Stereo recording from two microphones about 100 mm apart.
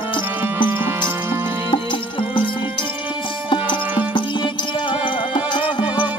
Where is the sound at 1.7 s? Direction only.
55° left (ahead or behind).